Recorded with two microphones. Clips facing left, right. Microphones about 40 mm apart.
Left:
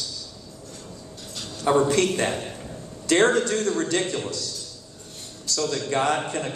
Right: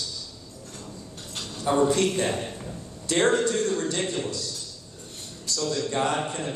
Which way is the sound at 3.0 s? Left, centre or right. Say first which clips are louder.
Left 3 dB; left.